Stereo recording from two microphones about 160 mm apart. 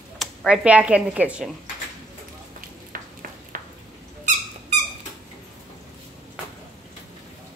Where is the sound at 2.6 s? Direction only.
60° right (ahead or behind).